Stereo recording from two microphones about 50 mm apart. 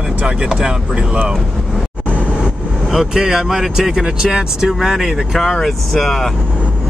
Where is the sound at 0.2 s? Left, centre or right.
Right.